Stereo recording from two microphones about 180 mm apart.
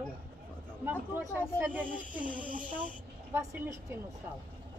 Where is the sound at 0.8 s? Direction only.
10° right (ahead or behind).